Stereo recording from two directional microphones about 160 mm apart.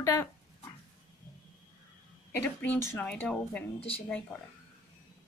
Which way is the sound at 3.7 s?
35° left (ahead or behind).